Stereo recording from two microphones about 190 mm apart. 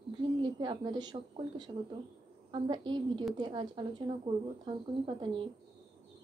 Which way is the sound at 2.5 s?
25° right (ahead or behind).